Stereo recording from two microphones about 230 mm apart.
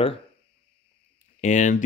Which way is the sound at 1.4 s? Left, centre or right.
Left.